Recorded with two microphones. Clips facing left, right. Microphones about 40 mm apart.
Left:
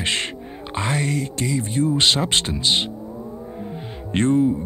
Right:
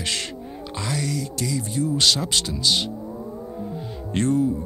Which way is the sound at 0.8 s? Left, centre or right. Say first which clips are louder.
Left 4 dB; left.